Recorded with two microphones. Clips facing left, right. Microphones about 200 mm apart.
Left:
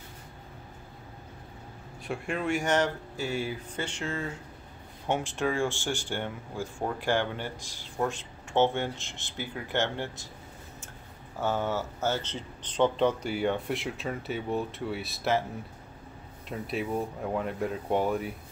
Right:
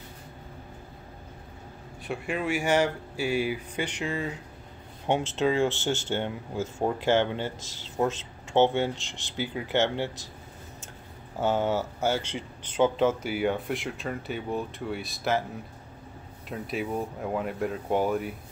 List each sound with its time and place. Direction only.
2.0 s speech: 5° right (ahead or behind)
11.3 s speech: 20° right (ahead or behind); by 15.4 s centre (ahead or behind)
16.4 s speech: centre (ahead or behind)